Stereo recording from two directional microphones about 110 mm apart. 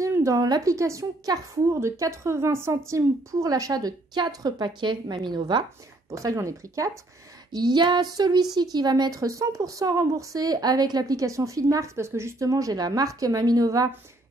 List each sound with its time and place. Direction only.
0.0 s a woman's voice: 30° right (ahead or behind); by 5.6 s 45° right (ahead or behind)
6.0 s speech: 30° right (ahead or behind)
7.5 s a woman's voice: 40° right (ahead or behind)